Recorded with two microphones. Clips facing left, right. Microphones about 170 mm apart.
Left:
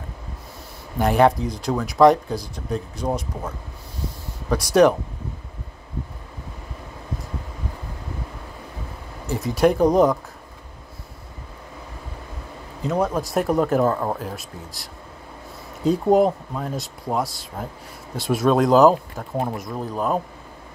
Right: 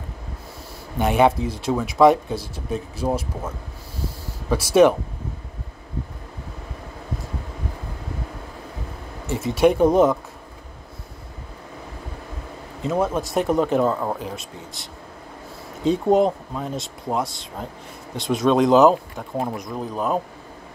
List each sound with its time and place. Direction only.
0.9 s speech: centre (ahead or behind)
9.3 s speech: centre (ahead or behind)
12.8 s speech: centre (ahead or behind)
15.8 s speech: centre (ahead or behind)